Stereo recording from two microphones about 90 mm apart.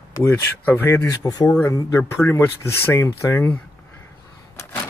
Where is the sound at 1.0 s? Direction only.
40° left (ahead or behind).